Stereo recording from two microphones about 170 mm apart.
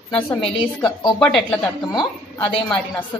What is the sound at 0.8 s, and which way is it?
Speech, 25° left (ahead or behind).